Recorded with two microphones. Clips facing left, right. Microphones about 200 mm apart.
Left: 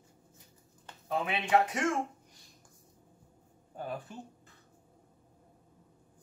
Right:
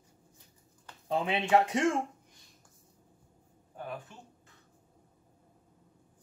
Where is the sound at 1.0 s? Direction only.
25° right (ahead or behind).